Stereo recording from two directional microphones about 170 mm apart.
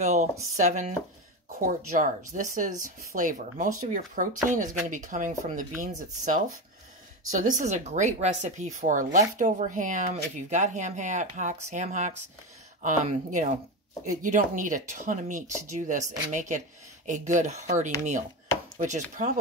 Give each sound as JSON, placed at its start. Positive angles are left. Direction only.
{"t": 0.0, "sound": "speech", "side_deg": -40}